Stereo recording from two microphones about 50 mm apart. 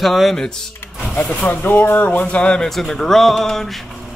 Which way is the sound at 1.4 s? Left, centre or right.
Left.